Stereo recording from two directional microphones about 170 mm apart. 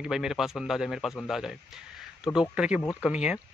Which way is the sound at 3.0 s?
5° right (ahead or behind).